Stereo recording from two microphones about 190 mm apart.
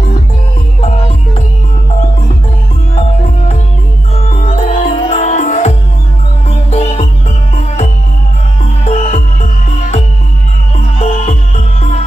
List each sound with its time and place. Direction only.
0.7 s music: 30° left (ahead or behind)
2.9 s music: 35° left (ahead or behind)